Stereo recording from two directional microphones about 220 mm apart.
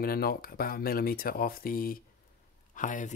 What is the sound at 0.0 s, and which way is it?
Speech, 45° left (ahead or behind).